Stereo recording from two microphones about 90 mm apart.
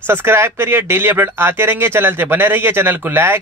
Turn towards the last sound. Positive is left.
turn(degrees=-25)  # may be behind; listen again after turning